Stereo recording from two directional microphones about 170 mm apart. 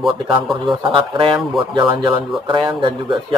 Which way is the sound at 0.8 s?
30° right (ahead or behind).